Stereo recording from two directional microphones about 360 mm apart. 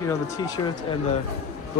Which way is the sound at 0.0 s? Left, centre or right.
Centre.